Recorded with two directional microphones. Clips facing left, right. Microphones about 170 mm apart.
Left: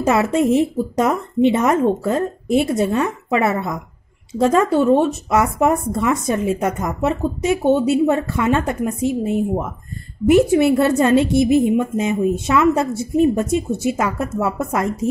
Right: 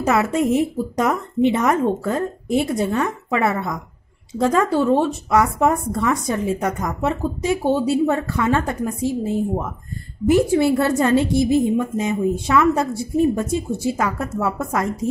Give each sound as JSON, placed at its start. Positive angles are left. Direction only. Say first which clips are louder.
{"t": 0.0, "sound": "speech", "louder": "left 2 dB", "side_deg": 25}